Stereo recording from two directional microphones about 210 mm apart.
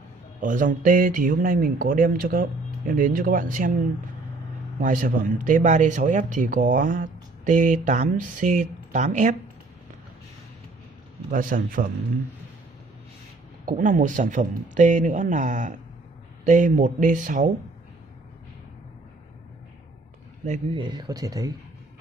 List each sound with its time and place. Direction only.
0.4 s speech: 40° right (ahead or behind)
4.7 s speech: 40° right (ahead or behind)
11.3 s speech: 40° right (ahead or behind)
13.7 s speech: 40° right (ahead or behind)
20.4 s speech: 35° right (ahead or behind)
20.8 s speech: 20° right (ahead or behind)